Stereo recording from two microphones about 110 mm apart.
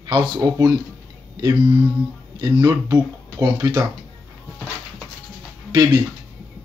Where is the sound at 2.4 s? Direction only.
35° right (ahead or behind).